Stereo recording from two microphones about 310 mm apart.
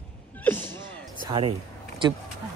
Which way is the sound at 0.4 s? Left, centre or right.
Centre.